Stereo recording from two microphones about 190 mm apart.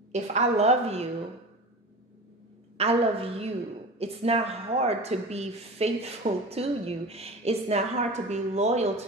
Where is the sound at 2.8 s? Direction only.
30° right (ahead or behind).